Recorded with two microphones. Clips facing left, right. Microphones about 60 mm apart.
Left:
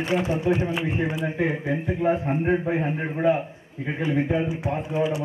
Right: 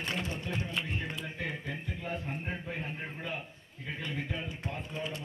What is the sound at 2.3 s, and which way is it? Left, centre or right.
A man's voice, left.